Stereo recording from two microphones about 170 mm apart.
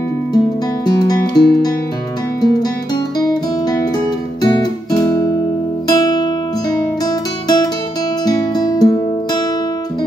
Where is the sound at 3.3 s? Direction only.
25° left (ahead or behind).